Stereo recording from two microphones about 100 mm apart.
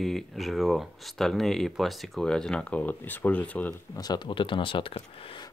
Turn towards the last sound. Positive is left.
turn(degrees=60)  # may be behind; listen again after turning